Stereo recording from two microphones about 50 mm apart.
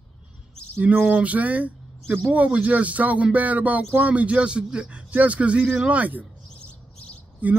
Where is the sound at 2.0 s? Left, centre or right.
Right.